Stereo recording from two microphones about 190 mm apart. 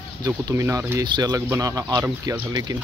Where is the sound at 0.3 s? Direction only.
15° right (ahead or behind).